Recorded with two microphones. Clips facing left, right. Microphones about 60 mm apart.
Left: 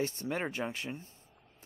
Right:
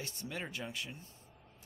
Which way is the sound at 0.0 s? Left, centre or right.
Left.